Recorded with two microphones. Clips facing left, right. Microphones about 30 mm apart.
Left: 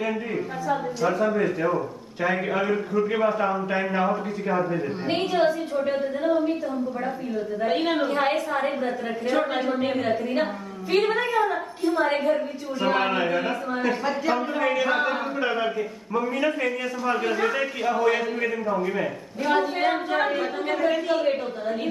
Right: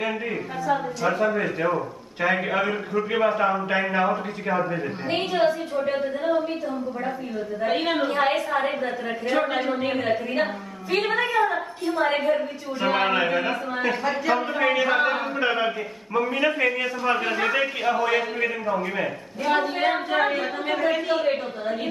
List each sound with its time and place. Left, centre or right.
0.7 s a woman's voice: centre
7.6 s a woman's voice: centre
12.8 s a woman's voice: centre